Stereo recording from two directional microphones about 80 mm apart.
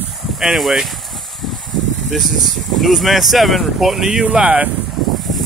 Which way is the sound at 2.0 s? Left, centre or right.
Centre.